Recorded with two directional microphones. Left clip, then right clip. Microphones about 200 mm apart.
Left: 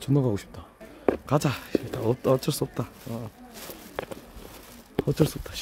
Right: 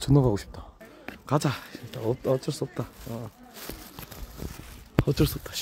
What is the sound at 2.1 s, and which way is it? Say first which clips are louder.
Speech: left 3 dB; 15° left (ahead or behind).